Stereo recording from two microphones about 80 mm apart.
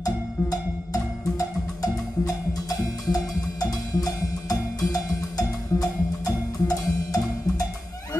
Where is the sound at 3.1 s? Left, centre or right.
Left.